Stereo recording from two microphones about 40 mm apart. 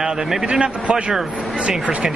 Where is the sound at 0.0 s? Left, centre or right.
Centre.